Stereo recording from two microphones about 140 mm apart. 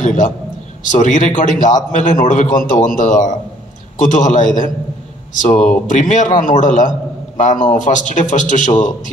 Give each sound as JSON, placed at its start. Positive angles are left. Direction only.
{"t": 0.0, "sound": "a man's voice", "side_deg": 65}